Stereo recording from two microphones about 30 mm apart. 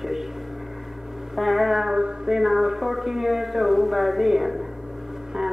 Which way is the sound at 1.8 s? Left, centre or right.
Right.